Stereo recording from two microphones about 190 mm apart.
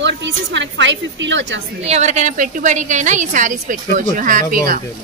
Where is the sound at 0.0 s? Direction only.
70° right (ahead or behind).